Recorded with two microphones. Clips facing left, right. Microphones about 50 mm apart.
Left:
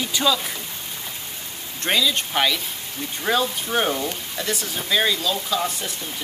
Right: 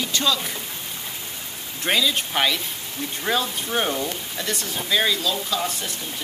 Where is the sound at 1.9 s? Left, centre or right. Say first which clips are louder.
Even; centre.